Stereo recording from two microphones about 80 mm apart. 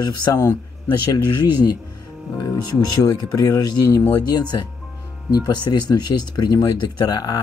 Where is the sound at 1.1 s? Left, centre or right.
Left.